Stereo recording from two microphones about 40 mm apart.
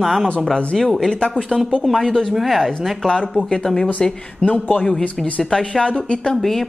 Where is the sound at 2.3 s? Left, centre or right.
Centre.